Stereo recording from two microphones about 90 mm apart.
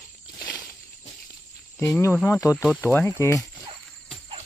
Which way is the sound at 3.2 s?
35° left (ahead or behind).